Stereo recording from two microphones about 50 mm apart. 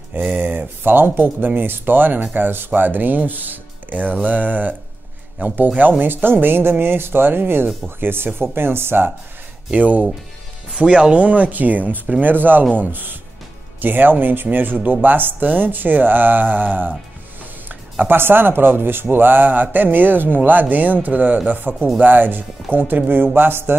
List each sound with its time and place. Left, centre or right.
0.3 s speech: right
9.7 s speech: right